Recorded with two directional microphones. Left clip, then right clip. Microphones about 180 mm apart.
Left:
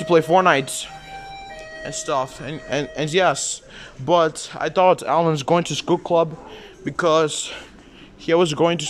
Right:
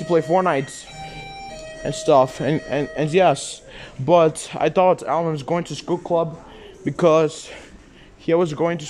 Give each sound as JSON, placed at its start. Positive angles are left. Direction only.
{"t": 0.0, "sound": "speech", "side_deg": 0}
{"t": 1.8, "sound": "speech", "side_deg": -25}
{"t": 2.7, "sound": "speech", "side_deg": -10}
{"t": 4.8, "sound": "speech", "side_deg": 5}
{"t": 6.8, "sound": "speech", "side_deg": -10}